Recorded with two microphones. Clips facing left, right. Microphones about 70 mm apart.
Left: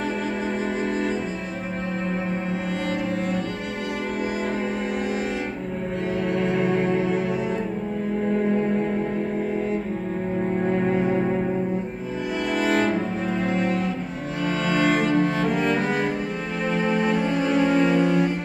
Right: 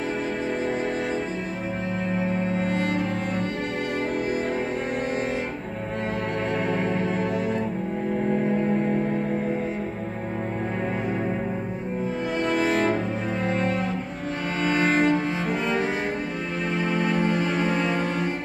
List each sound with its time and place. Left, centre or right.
2.7 s music: right
14.6 s cello: right
17.9 s music: right